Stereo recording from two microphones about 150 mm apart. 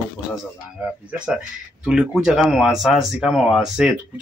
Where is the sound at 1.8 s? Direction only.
5° right (ahead or behind).